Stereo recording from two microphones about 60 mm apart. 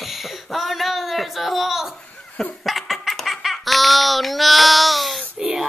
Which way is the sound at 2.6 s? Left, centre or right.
Centre.